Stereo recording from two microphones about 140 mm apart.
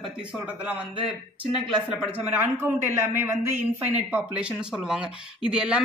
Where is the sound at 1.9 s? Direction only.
15° right (ahead or behind).